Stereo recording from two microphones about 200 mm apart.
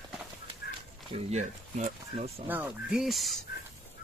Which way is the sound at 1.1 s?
35° right (ahead or behind).